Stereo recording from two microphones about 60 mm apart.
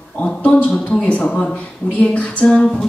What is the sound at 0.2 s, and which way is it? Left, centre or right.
A woman's voice, left.